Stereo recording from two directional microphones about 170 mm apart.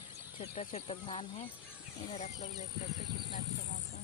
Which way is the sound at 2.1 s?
45° left (ahead or behind).